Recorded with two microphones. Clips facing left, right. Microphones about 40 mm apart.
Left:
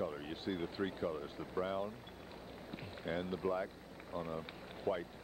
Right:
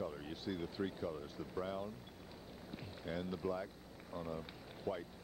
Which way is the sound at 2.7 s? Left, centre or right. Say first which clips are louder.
Left 3 dB; left.